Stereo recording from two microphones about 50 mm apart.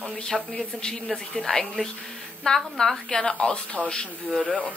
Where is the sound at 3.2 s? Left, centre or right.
Left.